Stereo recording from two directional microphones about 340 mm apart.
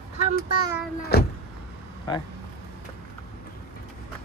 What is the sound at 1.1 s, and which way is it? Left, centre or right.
Vehicle, left.